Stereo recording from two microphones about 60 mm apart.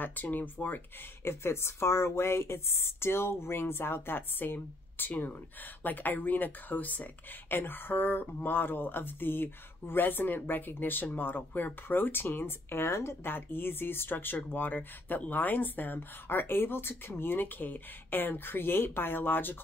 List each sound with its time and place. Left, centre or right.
0.0 s speech: left
1.2 s a woman's voice: left